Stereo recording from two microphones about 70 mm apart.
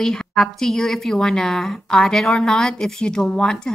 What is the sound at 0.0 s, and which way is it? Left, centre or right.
A woman's voice, centre.